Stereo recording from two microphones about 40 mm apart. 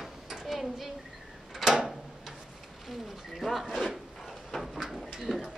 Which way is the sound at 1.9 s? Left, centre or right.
Centre.